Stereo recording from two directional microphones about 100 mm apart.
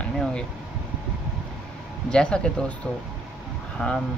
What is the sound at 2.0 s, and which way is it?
Speech, 10° left (ahead or behind).